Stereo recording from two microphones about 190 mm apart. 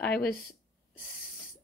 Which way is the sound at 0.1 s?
55° left (ahead or behind).